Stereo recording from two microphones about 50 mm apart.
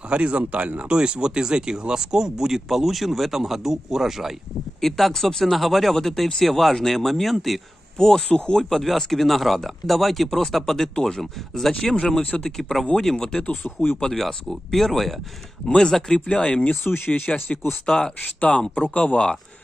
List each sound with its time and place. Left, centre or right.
0.1 s speech: right; by 4.3 s centre
4.8 s speech: centre
8.0 s speech: centre
8.6 s speech: centre; by 12.4 s left
12.4 s speech: centre
13.5 s speech: left
13.9 s speech: centre
16.8 s speech: left
17.1 s speech: left